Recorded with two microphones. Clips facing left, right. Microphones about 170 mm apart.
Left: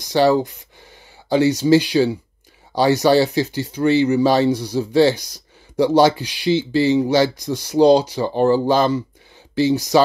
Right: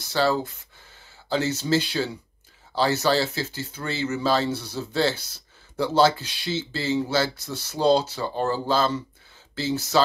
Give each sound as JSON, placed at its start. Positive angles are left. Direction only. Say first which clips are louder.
{"t": 0.0, "sound": "speech", "louder": "left 8 dB", "side_deg": 15}